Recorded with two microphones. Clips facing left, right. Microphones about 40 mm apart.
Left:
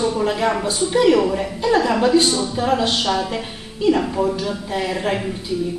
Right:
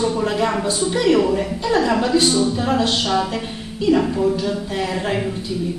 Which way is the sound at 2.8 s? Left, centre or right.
Centre.